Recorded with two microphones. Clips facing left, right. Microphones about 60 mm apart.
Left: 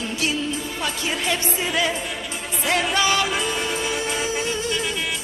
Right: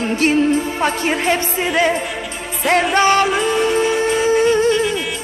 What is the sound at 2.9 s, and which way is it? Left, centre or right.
Music, right.